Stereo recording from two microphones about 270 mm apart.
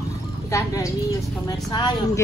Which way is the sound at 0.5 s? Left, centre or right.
Centre.